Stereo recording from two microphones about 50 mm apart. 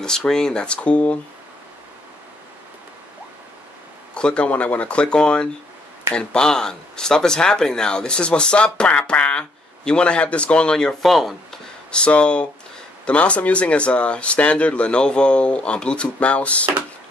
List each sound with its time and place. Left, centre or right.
0.0 s speech: centre
4.1 s speech: left
11.1 s speech: centre
11.9 s speech: left